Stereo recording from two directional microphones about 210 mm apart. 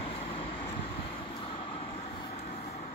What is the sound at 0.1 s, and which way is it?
Vehicle, 25° left (ahead or behind).